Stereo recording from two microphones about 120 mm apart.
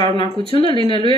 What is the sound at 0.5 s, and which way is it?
Speech, 50° left (ahead or behind).